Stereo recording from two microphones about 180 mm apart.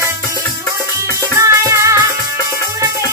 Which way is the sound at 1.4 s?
15° right (ahead or behind).